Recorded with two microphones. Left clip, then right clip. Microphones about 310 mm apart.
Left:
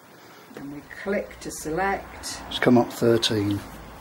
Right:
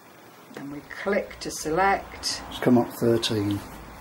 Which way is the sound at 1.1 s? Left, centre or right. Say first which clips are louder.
Even; right.